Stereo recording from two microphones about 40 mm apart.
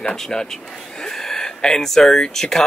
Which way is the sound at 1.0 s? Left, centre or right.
Centre.